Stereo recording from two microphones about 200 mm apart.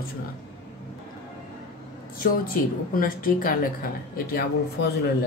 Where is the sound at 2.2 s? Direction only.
45° left (ahead or behind).